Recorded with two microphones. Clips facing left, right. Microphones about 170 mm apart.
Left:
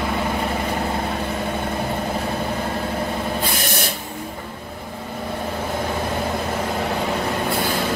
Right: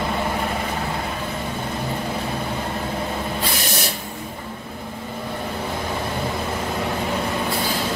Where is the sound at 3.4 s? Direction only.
50° left (ahead or behind).